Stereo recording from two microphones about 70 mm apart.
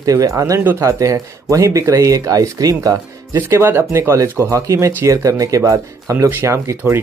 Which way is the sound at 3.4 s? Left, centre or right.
Right.